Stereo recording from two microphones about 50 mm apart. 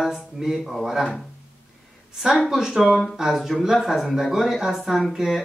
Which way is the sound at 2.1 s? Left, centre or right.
Centre.